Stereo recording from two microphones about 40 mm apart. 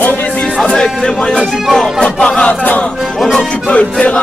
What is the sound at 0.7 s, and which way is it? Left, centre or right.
Music, centre.